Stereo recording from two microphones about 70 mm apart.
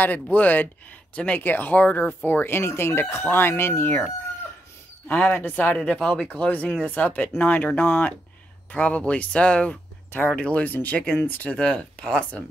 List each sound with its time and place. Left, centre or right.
0.0 s speech: left
5.0 s speech: left
11.5 s speech: centre